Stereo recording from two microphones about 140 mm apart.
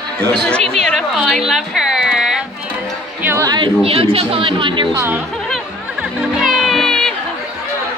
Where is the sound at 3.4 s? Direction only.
35° right (ahead or behind).